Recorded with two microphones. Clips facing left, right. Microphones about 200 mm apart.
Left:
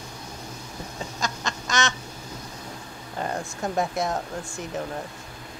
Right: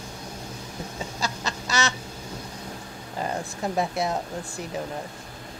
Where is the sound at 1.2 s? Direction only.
35° right (ahead or behind).